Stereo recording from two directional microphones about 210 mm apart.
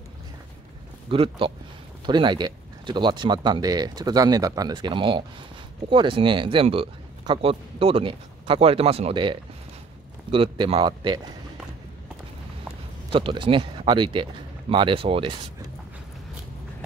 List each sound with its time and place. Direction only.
1.1 s speech: 25° right (ahead or behind)
13.1 s speech: 25° right (ahead or behind)